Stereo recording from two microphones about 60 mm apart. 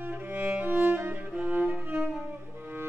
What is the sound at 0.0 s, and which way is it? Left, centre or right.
Music, right.